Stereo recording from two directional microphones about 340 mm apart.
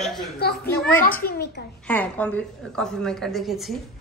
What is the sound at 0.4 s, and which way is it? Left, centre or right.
Speech, left.